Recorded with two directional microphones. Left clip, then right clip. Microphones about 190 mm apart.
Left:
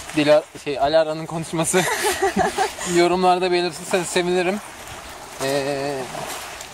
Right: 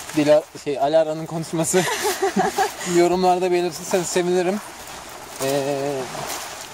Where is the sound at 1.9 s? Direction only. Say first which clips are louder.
Left 1 dB; 45° left (ahead or behind).